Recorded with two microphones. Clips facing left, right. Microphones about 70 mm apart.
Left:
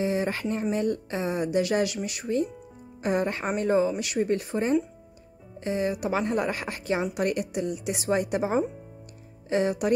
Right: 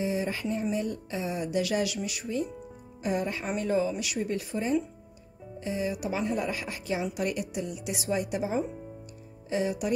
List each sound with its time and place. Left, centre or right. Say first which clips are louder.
0.0 s a woman's voice: left 3 dB; left